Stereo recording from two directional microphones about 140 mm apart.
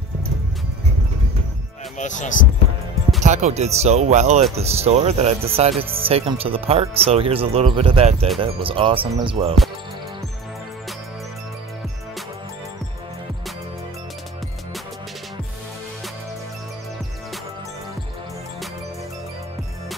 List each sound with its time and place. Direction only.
2.0 s speech: 60° left (ahead or behind)
3.2 s speech: 55° right (ahead or behind); by 9.6 s 40° right (ahead or behind)